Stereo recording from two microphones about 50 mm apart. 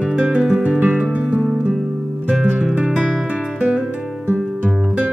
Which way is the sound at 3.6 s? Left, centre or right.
Right.